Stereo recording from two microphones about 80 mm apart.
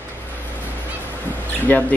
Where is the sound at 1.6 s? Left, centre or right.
Left.